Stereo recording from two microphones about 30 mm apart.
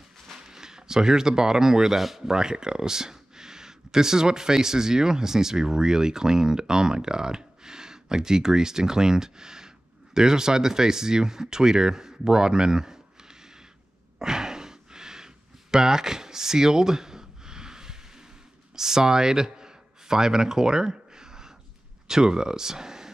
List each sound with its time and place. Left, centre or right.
0.4 s speech: centre
2.0 s speech: centre
2.2 s speech: right
14.2 s a sound: centre
22.0 s speech: right